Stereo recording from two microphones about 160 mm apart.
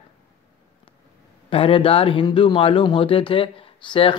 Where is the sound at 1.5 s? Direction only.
35° left (ahead or behind).